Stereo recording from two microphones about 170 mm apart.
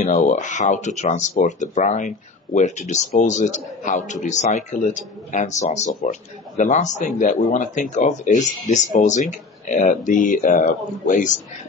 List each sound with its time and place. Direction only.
0.0 s speech: 45° left (ahead or behind)